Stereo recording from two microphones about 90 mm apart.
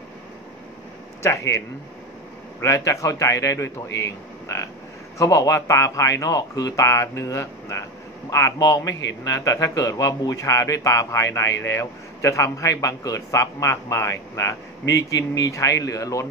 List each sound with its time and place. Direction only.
1.2 s a man's voice: 35° left (ahead or behind)
2.6 s a man's voice: 35° left (ahead or behind)
5.2 s a man's voice: 40° left (ahead or behind)